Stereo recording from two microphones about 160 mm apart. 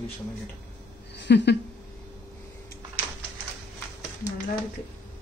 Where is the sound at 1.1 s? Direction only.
90° left.